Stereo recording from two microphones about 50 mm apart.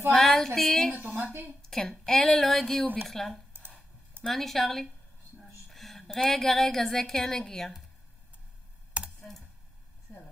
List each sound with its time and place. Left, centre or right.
0.1 s female singing: centre
0.6 s a woman's voice: centre
0.9 s a woman's voice: right
1.6 s a woman's voice: centre
5.4 s a sound: centre
6.1 s a woman's voice: centre
9.0 s a sound: right